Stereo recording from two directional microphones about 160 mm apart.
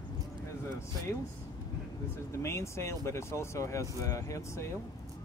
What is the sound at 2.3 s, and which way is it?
Speech, 15° left (ahead or behind).